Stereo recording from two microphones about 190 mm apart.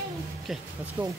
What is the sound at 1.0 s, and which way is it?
Speech, 15° right (ahead or behind).